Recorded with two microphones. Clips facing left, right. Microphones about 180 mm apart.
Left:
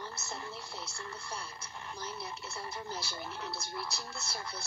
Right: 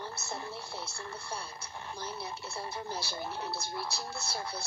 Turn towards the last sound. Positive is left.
turn(degrees=-30)  # may be behind; listen again after turning